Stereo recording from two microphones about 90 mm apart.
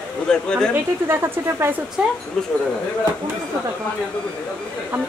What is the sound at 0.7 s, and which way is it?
Speech, 25° right (ahead or behind).